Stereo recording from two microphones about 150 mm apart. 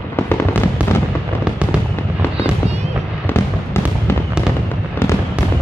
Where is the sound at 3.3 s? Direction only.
15° left (ahead or behind).